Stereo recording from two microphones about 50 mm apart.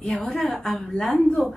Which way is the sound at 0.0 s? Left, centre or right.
Centre.